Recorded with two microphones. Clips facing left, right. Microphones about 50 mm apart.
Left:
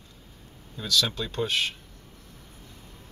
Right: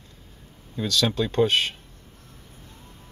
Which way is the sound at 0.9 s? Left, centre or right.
Right.